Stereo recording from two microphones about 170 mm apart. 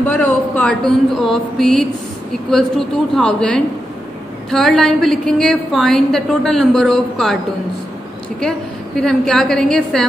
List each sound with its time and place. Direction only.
0.0 s speech: 10° left (ahead or behind)
3.2 s a woman's voice: 5° left (ahead or behind)
8.4 s a woman's voice: 5° left (ahead or behind)